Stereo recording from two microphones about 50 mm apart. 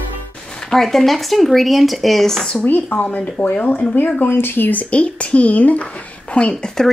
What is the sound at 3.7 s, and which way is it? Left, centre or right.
Speech, left.